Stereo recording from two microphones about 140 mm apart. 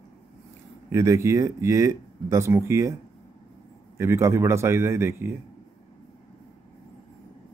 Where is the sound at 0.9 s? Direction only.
20° right (ahead or behind).